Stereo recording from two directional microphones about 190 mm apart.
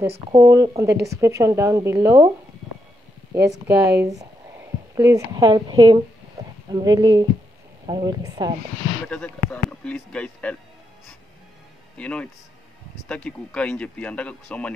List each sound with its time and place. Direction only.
0.3 s a woman's voice: 15° right (ahead or behind)
3.3 s a woman's voice: 15° right (ahead or behind)
9.1 s speech: 5° left (ahead or behind)
12.0 s speech: 5° left (ahead or behind)